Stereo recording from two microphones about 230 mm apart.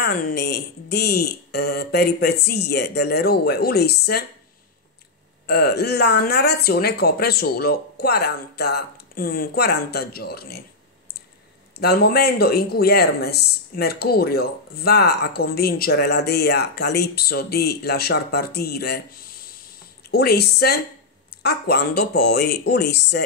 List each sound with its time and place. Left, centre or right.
0.0 s speech: left
5.5 s speech: left
11.7 s speech: left